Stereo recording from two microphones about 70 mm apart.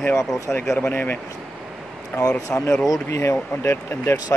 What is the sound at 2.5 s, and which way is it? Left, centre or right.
Speech, left.